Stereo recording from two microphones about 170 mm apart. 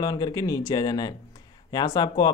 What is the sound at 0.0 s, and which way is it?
Speech, 25° left (ahead or behind).